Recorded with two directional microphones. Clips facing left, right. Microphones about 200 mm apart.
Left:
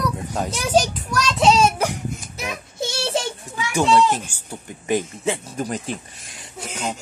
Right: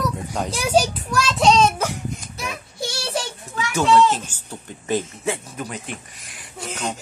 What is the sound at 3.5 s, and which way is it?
Speech, 15° left (ahead or behind).